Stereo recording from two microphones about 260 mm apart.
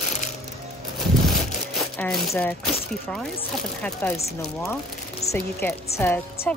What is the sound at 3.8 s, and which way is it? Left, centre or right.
Speech, centre.